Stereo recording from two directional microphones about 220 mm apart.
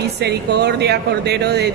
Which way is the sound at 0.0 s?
50° right (ahead or behind).